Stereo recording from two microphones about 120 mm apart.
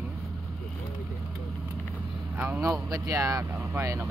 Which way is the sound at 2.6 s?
25° right (ahead or behind).